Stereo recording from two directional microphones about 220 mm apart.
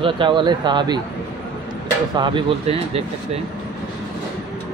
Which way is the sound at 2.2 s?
20° right (ahead or behind).